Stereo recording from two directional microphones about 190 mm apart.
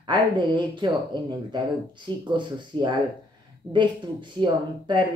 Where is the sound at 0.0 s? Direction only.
25° right (ahead or behind).